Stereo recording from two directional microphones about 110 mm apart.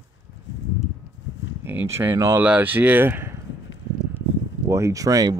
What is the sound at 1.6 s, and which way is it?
Speech, 20° right (ahead or behind).